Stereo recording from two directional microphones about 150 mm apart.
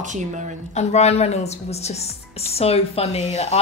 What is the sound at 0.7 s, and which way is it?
A woman's voice, 45° left (ahead or behind).